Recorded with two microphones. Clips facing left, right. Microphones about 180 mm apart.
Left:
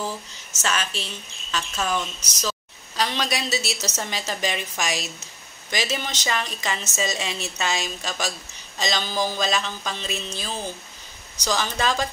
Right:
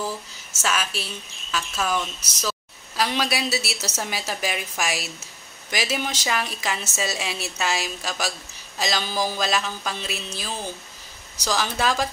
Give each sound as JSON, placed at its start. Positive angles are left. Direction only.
{"t": 0.6, "sound": "a woman's voice", "side_deg": -5}